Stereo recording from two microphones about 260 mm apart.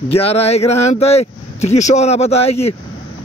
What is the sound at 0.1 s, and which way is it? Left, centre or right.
Speech, left.